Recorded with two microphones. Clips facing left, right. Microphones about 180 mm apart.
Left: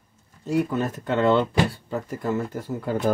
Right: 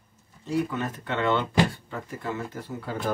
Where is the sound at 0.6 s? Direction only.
40° left (ahead or behind).